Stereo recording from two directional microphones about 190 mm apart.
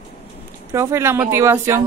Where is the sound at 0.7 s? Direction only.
15° right (ahead or behind).